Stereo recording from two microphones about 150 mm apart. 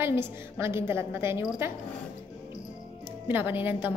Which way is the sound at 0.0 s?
15° right (ahead or behind).